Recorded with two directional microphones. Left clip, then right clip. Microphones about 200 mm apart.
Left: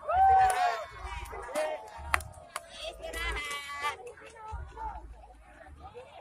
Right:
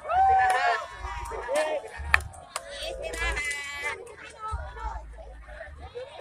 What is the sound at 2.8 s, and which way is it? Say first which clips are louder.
Music: right 5 dB; 35° left (ahead or behind).